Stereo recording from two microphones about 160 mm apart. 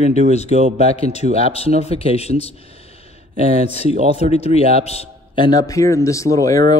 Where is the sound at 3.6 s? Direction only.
40° left (ahead or behind); by 6.6 s 20° left (ahead or behind).